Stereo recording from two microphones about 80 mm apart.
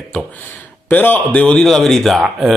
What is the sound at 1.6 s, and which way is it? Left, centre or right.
Speech, centre.